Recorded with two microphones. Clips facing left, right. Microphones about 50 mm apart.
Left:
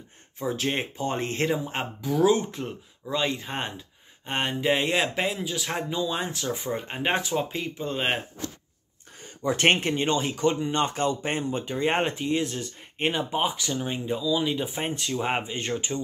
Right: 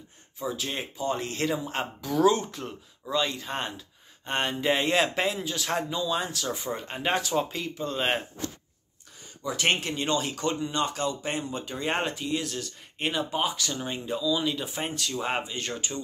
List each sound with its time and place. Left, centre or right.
0.4 s speech: left
1.5 s speech: centre
9.2 s speech: left; by 10.7 s centre
10.7 s speech: left